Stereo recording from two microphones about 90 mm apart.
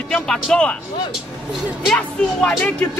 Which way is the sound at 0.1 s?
10° left (ahead or behind).